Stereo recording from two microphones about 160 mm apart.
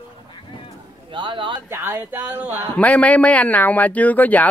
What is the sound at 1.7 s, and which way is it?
Speech, 15° right (ahead or behind).